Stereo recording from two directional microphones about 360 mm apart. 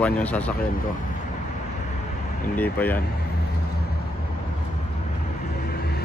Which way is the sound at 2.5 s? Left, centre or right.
Centre.